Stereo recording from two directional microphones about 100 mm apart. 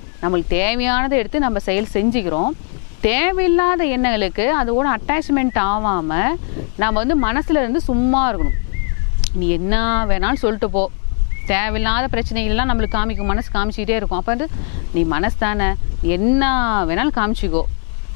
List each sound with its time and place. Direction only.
0.2 s a woman's voice: 15° left (ahead or behind)